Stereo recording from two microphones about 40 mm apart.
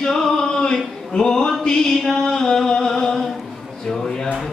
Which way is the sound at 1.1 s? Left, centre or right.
Centre.